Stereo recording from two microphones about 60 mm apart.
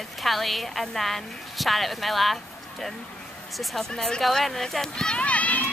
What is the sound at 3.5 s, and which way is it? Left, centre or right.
Speech, centre.